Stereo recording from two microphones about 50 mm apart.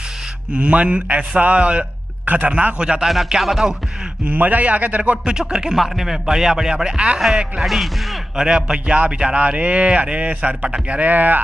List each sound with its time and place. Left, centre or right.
0.5 s speech: right
2.8 s a man's voice: centre
3.3 s music: centre
4.3 s speech: right
5.3 s a man's voice: centre
7.5 s speech: centre
8.5 s speech: centre; by 11.4 s right